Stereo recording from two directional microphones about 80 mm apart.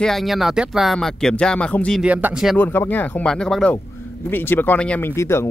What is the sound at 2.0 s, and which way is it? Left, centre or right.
Speech, centre.